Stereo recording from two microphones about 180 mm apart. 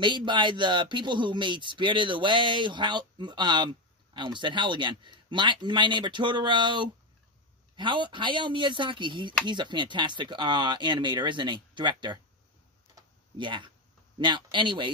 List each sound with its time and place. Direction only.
0.0 s speech: 25° right (ahead or behind)
12.9 s tick-tock: 25° right (ahead or behind)
14.1 s speech: 25° right (ahead or behind)